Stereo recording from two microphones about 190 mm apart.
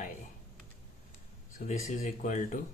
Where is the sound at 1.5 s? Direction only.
40° left (ahead or behind).